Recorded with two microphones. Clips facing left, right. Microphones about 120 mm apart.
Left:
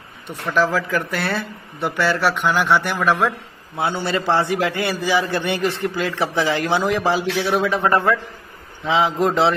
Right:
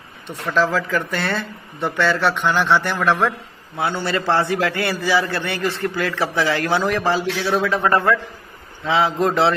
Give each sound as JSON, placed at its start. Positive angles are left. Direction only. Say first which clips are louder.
{"t": 0.5, "sound": "a man's voice", "louder": "even", "side_deg": 10}